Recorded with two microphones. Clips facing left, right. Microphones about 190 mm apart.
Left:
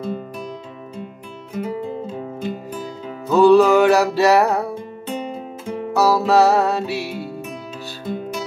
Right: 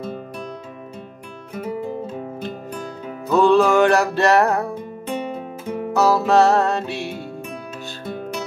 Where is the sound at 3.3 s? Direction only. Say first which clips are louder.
Left 3 dB; 5° left (ahead or behind).